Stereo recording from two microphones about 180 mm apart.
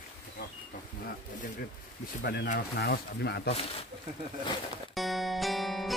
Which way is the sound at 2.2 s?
65° left (ahead or behind).